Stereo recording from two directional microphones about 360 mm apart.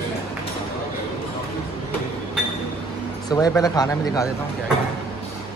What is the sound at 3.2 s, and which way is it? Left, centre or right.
Speech, centre.